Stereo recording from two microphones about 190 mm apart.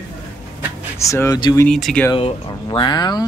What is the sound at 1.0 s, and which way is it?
Speech, 15° left (ahead or behind).